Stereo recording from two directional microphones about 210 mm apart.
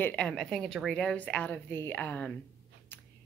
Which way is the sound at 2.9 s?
10° left (ahead or behind).